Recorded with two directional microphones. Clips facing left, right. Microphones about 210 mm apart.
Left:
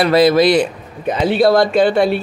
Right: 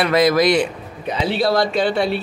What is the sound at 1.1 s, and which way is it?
Speech, 50° left (ahead or behind).